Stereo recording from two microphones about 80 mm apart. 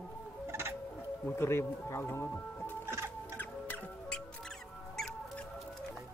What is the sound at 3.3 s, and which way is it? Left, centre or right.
Music, left.